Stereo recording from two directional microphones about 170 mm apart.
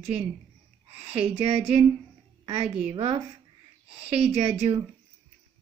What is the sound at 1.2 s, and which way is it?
Speech, 40° right (ahead or behind).